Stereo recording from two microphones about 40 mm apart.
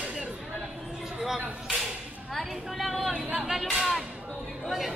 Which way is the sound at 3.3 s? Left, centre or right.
Centre.